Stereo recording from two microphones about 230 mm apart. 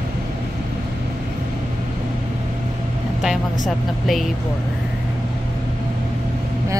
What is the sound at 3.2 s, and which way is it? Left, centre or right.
Vehicle, centre.